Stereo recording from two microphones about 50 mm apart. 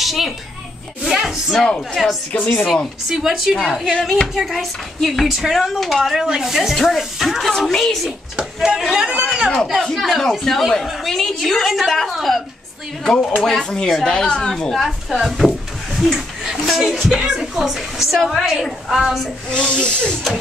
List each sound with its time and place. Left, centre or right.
0.0 s a child's voice: centre
6.7 s a woman's voice: centre
8.6 s speech: centre
9.2 s a sound: centre
9.8 s a woman's voice: centre
13.0 s speech: centre
14.8 s a woman's voice: centre
19.5 s speech: centre